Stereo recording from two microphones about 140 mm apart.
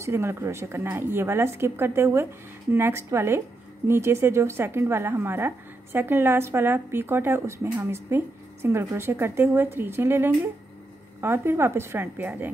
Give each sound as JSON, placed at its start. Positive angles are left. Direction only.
{"t": 0.0, "sound": "a woman's voice", "side_deg": -20}